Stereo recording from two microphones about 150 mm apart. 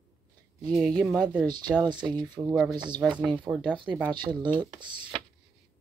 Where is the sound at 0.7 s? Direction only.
5° left (ahead or behind).